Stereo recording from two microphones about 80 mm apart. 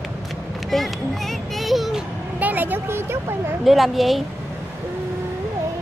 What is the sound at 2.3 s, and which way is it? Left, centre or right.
Speech, right.